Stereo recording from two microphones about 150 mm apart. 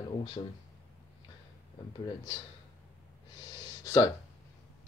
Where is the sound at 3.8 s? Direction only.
20° left (ahead or behind).